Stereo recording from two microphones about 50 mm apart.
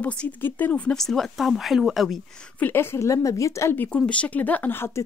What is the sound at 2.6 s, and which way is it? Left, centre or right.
Speech, left.